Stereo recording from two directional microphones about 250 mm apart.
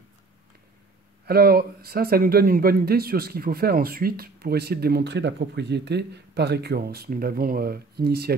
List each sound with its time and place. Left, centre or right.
1.2 s speech: right